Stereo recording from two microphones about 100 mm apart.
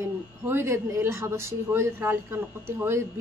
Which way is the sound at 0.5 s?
25° right (ahead or behind).